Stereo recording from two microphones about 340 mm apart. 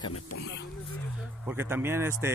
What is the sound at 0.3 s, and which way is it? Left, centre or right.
Speech, left.